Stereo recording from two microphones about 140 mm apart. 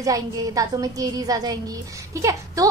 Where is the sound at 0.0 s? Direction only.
25° right (ahead or behind).